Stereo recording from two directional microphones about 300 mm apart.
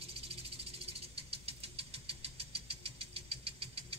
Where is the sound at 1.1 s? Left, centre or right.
Centre.